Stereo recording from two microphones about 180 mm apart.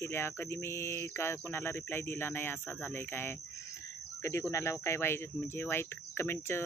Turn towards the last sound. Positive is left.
turn(degrees=15)  # may be behind; listen again after turning